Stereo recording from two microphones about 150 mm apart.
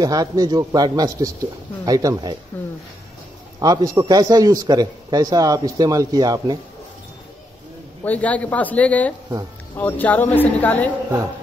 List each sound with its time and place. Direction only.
0.0 s a man's voice: 25° right (ahead or behind)
3.5 s a man's voice: 25° right (ahead or behind)
8.0 s speech: 10° left (ahead or behind)